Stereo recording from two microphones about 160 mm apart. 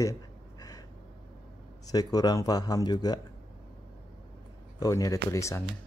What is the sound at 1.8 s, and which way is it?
Speech, 25° left (ahead or behind).